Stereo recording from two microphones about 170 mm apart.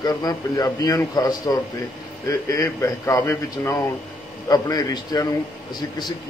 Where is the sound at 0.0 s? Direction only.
20° left (ahead or behind).